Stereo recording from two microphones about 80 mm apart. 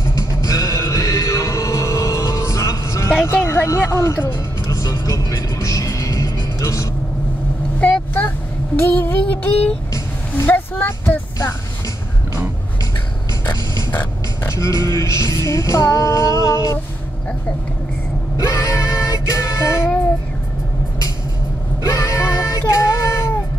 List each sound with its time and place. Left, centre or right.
0.1 s music: left
8.7 s child singing: left
9.9 s vehicle: left
10.9 s music: left
13.9 s a sound: left
14.8 s music: left
18.4 s music: left
21.8 s a sound: left